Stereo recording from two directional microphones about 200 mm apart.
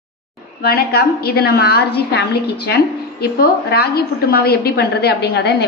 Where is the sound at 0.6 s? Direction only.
50° left (ahead or behind).